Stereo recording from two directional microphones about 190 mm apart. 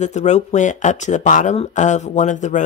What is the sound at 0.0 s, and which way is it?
Speech, 40° left (ahead or behind).